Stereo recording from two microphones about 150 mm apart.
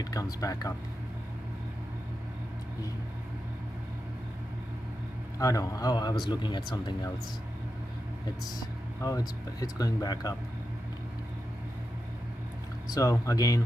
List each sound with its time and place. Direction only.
0.0 s speech: 25° left (ahead or behind)
5.4 s speech: 25° left (ahead or behind)
8.5 s speech: 25° left (ahead or behind)
12.9 s speech: 20° left (ahead or behind)